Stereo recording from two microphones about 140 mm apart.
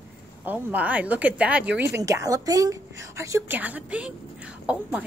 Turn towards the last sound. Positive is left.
turn(degrees=-10)  # may be behind; listen again after turning